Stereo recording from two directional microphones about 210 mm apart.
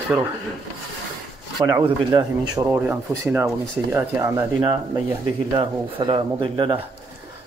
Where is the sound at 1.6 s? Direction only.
15° right (ahead or behind).